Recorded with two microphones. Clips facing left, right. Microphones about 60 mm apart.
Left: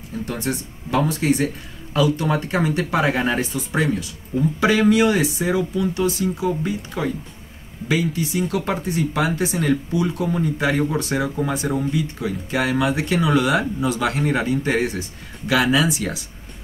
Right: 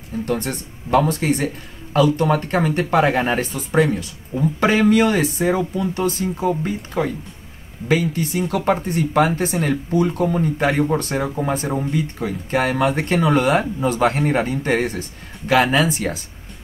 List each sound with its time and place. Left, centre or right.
0.2 s speech: right